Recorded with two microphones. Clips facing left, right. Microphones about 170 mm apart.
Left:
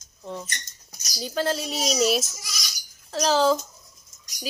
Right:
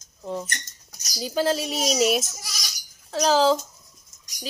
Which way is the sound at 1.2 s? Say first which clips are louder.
Right 3 dB; 10° right (ahead or behind).